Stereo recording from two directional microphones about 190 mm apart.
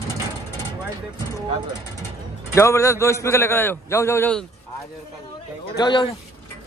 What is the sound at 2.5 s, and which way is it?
A man's voice, 15° left (ahead or behind).